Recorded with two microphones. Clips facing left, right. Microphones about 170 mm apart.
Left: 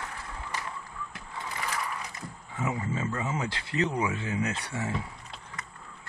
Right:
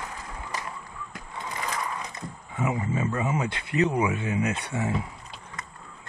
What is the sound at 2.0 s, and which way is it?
Speech, 20° right (ahead or behind).